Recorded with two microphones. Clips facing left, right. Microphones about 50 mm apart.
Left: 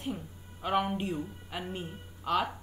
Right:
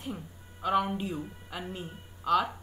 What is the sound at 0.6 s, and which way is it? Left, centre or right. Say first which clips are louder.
Speech: right 2 dB; centre.